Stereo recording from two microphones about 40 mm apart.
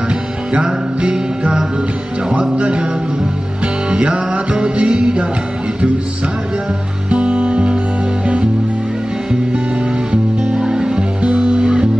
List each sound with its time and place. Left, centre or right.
0.5 s music: right
7.1 s music: right
10.6 s music: centre